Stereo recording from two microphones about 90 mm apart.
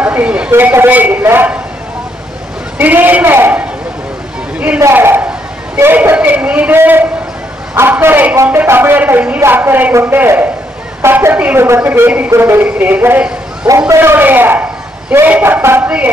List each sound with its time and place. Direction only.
0.0 s speech: 15° right (ahead or behind)
0.5 s a man's voice: 25° right (ahead or behind)
2.8 s a man's voice: 20° right (ahead or behind)
4.9 s a man's voice: 25° right (ahead or behind)